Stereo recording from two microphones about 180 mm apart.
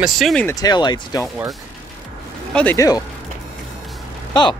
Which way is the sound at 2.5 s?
15° left (ahead or behind).